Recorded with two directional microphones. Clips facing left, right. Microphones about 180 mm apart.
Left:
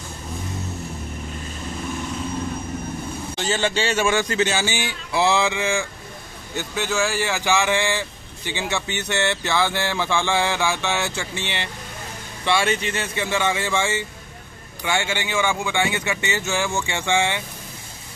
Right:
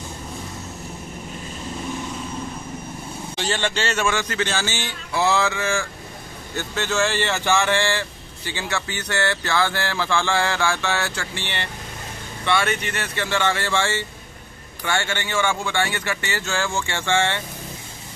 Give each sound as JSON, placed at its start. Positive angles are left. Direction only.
{"t": 3.3, "sound": "speech", "side_deg": 5}
{"t": 12.4, "sound": "speech", "side_deg": 20}